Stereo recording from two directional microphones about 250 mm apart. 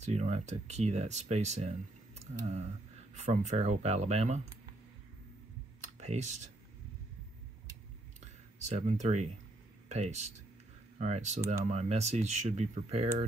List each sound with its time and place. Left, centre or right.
0.0 s speech: right
5.9 s speech: right
8.2 s a sound: right
9.8 s speech: right